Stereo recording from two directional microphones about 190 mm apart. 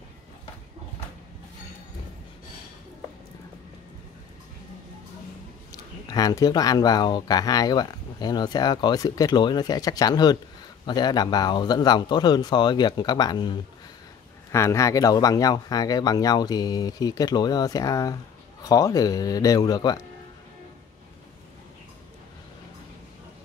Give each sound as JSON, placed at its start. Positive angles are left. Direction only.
{"t": 5.7, "sound": "speech", "side_deg": 20}